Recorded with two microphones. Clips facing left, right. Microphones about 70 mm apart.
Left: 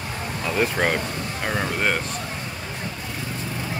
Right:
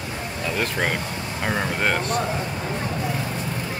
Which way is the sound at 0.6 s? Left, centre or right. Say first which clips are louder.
Left 3 dB; centre.